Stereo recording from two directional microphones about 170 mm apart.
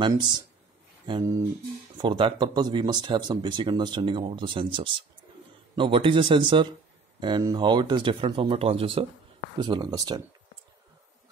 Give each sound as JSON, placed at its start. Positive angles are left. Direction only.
{"t": 0.0, "sound": "speech", "side_deg": -25}
{"t": 2.0, "sound": "speech", "side_deg": -30}